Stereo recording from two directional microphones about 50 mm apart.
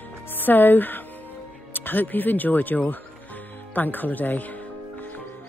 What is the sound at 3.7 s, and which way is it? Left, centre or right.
Music, left.